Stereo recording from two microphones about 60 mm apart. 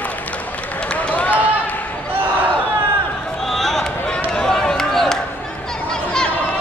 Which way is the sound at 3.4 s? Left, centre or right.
Centre.